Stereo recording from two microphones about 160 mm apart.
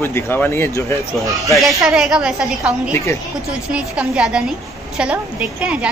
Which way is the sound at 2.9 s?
15° left (ahead or behind).